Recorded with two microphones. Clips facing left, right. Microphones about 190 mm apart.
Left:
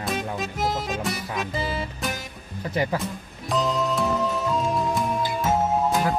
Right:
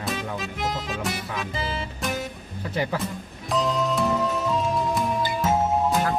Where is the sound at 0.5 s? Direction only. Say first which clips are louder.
Left 4 dB; 40° left (ahead or behind).